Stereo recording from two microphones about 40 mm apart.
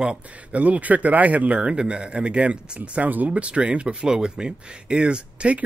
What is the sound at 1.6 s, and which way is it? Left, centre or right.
Speech, right.